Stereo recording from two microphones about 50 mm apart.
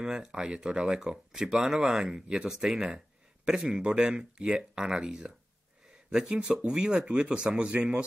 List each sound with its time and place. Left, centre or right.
0.0 s speech: centre